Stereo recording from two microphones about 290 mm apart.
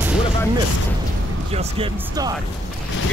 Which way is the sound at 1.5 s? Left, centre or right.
Centre.